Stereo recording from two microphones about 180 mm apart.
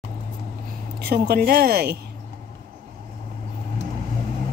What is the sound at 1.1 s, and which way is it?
Speech, 60° right (ahead or behind).